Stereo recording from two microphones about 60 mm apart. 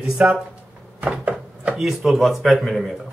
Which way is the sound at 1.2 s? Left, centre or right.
Right.